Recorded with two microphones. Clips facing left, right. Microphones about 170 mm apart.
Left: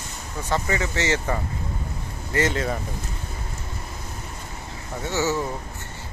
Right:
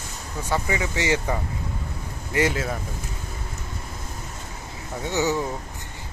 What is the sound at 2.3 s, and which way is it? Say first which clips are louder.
Speech: even; 10° right (ahead or behind).